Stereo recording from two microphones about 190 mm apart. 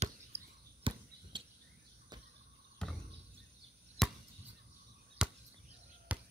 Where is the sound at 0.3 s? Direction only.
35° right (ahead or behind).